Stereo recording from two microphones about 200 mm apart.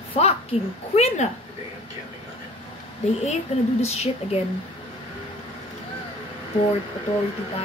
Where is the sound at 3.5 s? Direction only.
35° left (ahead or behind).